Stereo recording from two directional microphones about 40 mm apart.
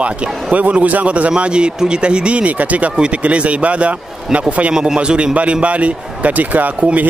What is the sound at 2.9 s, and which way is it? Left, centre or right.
Speech, right.